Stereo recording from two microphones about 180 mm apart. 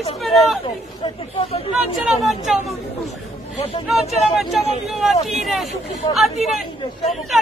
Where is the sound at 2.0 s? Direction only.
Centre (ahead or behind).